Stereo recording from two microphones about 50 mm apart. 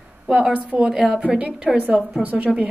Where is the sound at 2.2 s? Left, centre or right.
Right.